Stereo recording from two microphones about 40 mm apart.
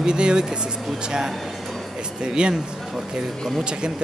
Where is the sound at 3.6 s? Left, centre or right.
Right.